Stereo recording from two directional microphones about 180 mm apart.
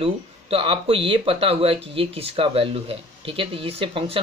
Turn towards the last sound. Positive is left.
turn(degrees=-30)  # may be behind; listen again after turning